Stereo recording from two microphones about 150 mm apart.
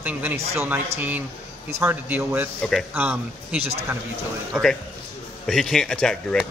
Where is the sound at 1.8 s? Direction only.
15° right (ahead or behind).